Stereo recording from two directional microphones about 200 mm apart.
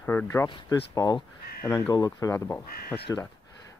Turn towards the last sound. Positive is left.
turn(degrees=5)  # may be behind; listen again after turning